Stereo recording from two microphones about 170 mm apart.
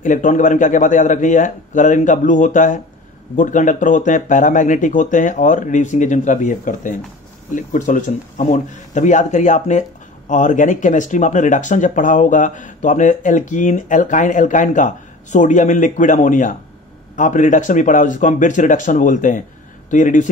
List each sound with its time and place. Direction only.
0.0 s speech: 50° left (ahead or behind)